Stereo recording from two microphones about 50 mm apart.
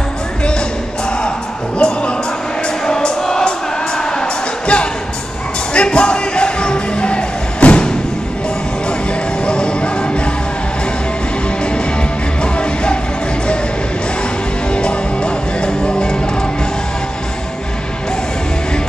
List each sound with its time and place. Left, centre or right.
1.8 s music: centre
9.5 s music: left
14.7 s music: left